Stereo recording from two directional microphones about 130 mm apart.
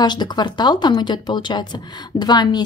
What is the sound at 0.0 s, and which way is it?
A woman's voice, 35° left (ahead or behind).